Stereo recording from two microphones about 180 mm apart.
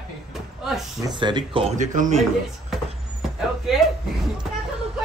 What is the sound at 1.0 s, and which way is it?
Speech, 25° right (ahead or behind).